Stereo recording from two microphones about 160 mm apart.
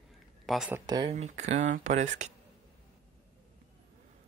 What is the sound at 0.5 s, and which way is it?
Speech, 5° right (ahead or behind).